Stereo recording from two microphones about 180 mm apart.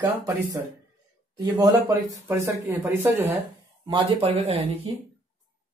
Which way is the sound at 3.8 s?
30° right (ahead or behind).